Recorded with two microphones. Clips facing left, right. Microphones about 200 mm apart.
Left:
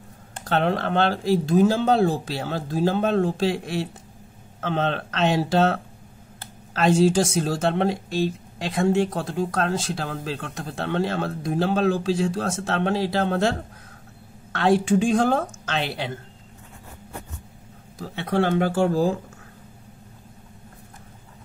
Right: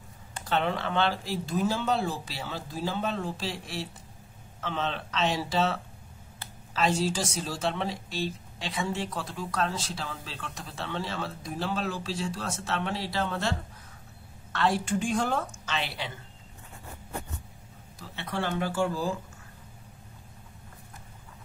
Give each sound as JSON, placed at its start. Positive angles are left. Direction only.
{"t": 0.6, "sound": "a woman's voice", "side_deg": 70}
{"t": 2.0, "sound": "speech", "side_deg": 60}
{"t": 6.4, "sound": "a sound", "side_deg": 55}
{"t": 7.4, "sound": "speech", "side_deg": 55}
{"t": 12.5, "sound": "speech", "side_deg": 75}
{"t": 14.9, "sound": "a woman's voice", "side_deg": 90}
{"t": 17.9, "sound": "speech", "side_deg": 60}